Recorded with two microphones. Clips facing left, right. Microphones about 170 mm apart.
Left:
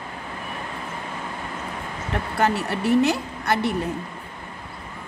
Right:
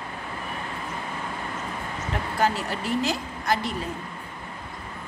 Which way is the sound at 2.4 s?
65° left (ahead or behind).